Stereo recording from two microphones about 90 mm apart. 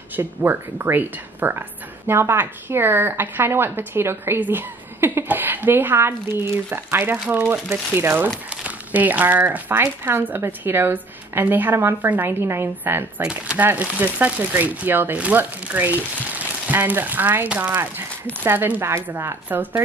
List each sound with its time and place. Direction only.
0.1 s speech: 25° right (ahead or behind)
13.2 s speech: 10° right (ahead or behind)